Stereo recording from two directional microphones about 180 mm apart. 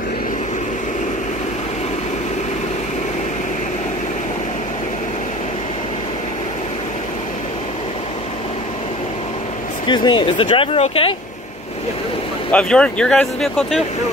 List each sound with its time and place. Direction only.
9.8 s speech: 25° left (ahead or behind)
12.4 s speech: 5° left (ahead or behind)